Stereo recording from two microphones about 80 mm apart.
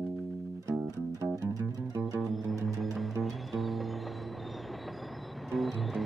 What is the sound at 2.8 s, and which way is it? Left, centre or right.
Music, centre.